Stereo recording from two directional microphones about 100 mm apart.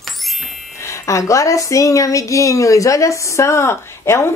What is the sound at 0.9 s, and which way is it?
A woman's voice, 30° left (ahead or behind).